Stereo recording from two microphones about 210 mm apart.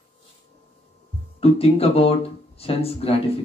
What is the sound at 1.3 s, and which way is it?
Speech, 30° left (ahead or behind).